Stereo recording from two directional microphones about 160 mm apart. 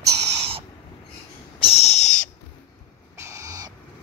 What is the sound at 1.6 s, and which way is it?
Owl, 40° left (ahead or behind).